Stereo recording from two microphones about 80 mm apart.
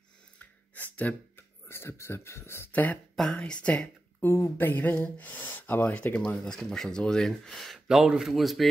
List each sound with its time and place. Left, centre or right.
0.4 s a sound: centre
1.3 s speech: left
3.2 s speech: centre
4.2 s speech: left
4.6 s speech: left; by 8.6 s centre